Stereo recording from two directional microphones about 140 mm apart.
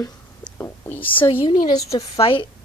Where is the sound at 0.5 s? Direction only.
15° left (ahead or behind).